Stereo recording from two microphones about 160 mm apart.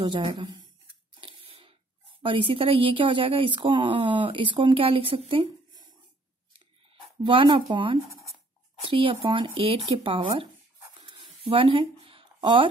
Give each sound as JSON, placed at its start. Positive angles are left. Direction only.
{"t": 0.0, "sound": "speech", "side_deg": -30}
{"t": 1.2, "sound": "a sound", "side_deg": -35}
{"t": 2.2, "sound": "a woman's voice", "side_deg": -35}
{"t": 7.2, "sound": "a woman's voice", "side_deg": -30}